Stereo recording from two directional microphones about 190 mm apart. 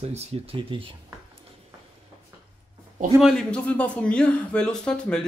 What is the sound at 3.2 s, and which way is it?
A man's voice, centre (ahead or behind).